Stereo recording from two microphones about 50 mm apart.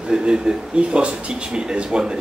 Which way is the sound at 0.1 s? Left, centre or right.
Centre.